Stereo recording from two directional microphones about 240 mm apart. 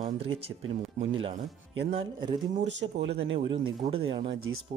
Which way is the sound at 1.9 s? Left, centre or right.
Centre.